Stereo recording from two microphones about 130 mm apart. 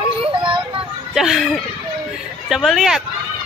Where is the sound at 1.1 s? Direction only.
5° right (ahead or behind).